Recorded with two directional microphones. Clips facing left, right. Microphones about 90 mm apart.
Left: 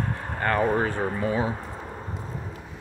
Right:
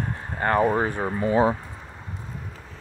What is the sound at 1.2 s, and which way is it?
Speech, 35° right (ahead or behind).